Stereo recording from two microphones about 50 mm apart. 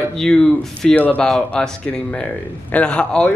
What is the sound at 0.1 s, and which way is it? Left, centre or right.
Speech, centre.